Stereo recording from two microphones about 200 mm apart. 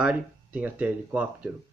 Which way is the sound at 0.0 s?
5° right (ahead or behind).